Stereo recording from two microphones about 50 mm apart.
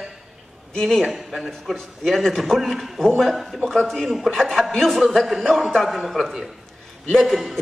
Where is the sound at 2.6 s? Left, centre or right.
Centre.